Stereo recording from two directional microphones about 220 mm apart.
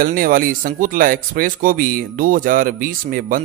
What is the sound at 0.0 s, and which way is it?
A man's voice, 40° right (ahead or behind).